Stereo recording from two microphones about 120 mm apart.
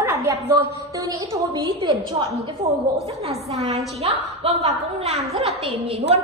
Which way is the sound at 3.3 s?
65° right (ahead or behind).